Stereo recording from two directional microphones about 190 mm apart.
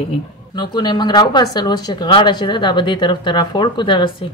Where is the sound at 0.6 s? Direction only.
20° left (ahead or behind).